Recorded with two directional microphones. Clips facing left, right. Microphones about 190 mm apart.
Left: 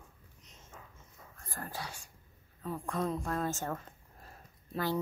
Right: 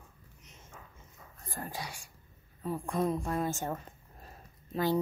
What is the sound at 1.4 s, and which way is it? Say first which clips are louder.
Speech: right 2 dB; 20° right (ahead or behind).